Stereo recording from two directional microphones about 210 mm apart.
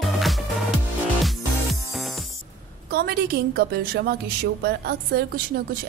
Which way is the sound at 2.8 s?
45° right (ahead or behind).